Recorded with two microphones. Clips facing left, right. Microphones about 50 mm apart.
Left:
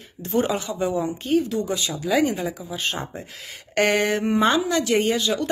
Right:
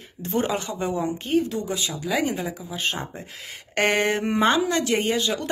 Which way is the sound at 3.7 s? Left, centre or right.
Right.